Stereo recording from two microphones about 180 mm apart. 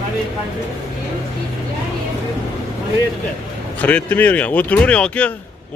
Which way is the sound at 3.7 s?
10° left (ahead or behind).